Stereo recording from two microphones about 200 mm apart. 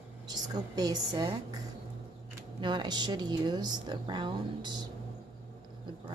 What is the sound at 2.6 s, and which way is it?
A woman's voice, 20° right (ahead or behind).